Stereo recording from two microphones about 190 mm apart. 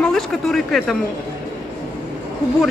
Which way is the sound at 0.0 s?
Centre (ahead or behind).